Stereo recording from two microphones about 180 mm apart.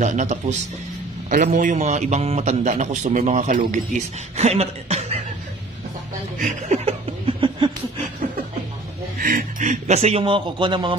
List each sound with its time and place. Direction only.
0.0 s a man's voice: 40° right (ahead or behind)
6.3 s chuckle: 40° right (ahead or behind)
9.2 s a man's voice: 45° right (ahead or behind); by 11.0 s 25° right (ahead or behind)